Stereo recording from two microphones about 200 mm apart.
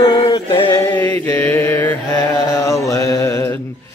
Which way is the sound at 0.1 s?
20° left (ahead or behind).